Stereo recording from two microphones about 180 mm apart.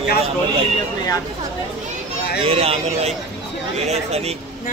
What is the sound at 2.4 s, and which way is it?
Speech, 35° right (ahead or behind).